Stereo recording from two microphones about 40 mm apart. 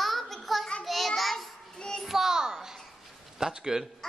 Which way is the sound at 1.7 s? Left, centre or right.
Centre.